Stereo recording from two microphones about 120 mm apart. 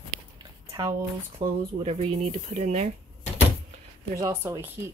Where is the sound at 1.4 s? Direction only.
55° right (ahead or behind); by 2.9 s 75° right (ahead or behind).